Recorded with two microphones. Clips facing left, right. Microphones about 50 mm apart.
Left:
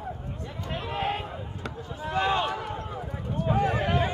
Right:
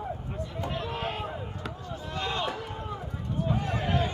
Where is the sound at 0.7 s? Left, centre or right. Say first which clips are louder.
Left 5 dB; centre.